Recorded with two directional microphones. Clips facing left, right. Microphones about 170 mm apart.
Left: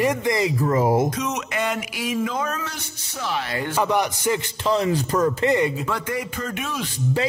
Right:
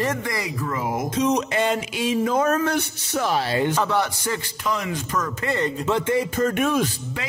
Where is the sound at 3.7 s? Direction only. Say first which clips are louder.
Left 1 dB; 15° left (ahead or behind).